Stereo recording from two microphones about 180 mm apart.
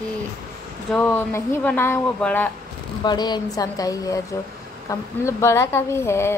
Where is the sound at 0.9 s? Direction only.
5° left (ahead or behind).